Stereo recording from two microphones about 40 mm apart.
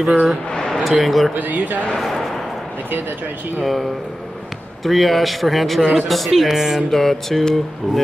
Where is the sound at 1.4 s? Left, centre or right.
Right.